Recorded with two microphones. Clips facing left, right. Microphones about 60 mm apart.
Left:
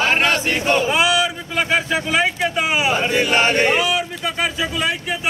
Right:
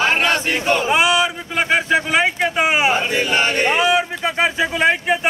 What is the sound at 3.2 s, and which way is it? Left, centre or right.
Choir, centre.